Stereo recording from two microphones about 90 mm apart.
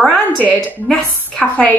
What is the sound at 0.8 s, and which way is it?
Speech, 5° left (ahead or behind).